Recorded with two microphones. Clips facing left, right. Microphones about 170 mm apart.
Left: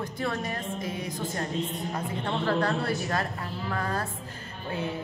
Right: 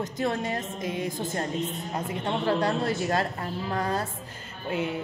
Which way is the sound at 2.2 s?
20° right (ahead or behind).